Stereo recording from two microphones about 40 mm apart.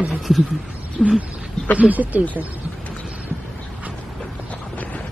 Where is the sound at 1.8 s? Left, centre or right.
Right.